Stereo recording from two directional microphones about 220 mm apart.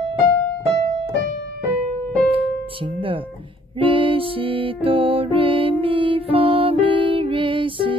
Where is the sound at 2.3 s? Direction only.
25° right (ahead or behind).